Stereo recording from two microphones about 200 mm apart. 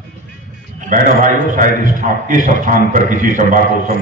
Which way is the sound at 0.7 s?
40° right (ahead or behind).